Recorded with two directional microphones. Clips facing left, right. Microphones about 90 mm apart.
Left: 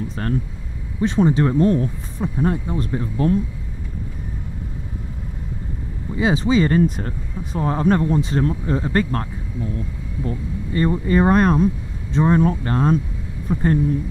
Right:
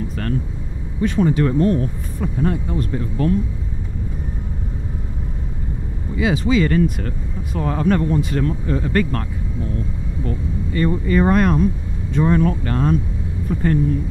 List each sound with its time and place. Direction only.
1.0 s speech: 25° left (ahead or behind)
6.1 s speech: 30° left (ahead or behind)